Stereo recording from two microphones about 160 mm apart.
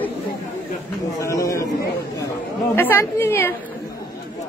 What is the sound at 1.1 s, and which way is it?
Speech, 20° left (ahead or behind).